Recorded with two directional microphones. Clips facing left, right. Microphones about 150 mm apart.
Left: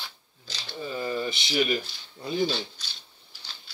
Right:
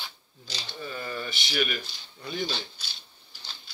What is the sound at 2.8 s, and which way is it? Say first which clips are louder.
Speech: even; 10° right (ahead or behind).